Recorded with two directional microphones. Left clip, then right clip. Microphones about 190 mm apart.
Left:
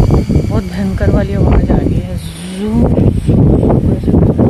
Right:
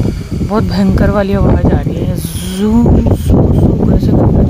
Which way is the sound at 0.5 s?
20° right (ahead or behind).